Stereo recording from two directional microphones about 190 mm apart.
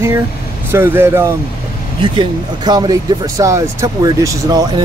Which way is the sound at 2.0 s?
25° right (ahead or behind).